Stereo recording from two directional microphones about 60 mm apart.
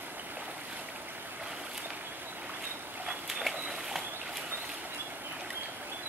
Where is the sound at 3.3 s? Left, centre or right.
Centre.